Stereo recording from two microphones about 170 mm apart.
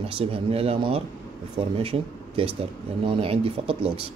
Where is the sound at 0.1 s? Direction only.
35° right (ahead or behind).